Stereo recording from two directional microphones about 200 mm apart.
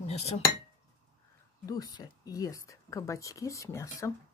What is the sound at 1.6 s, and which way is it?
Speech, 20° left (ahead or behind).